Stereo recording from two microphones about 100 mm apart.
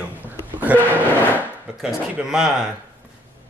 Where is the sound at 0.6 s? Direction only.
15° right (ahead or behind).